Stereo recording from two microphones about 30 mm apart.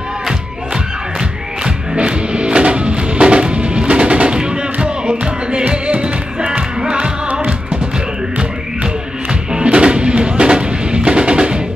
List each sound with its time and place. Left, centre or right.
2.0 s music: right
6.8 s music: right
8.8 s music: right